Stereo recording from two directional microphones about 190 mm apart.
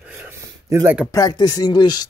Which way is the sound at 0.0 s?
10° right (ahead or behind).